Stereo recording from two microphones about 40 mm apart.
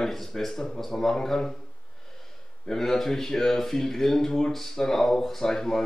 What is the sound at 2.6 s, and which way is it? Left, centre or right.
Speech, centre.